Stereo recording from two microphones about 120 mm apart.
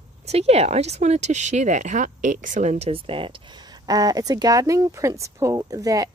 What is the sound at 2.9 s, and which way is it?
Speech, 50° right (ahead or behind).